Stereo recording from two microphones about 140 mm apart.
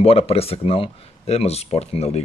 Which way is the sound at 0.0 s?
45° left (ahead or behind).